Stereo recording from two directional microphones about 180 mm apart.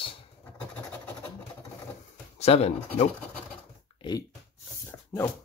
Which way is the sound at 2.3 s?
35° left (ahead or behind).